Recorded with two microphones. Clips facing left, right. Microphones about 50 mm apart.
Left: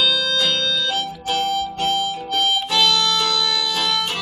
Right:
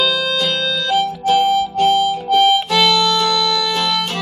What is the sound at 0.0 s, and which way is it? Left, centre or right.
Music, right.